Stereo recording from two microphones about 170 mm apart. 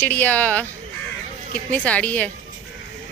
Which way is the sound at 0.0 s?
10° left (ahead or behind).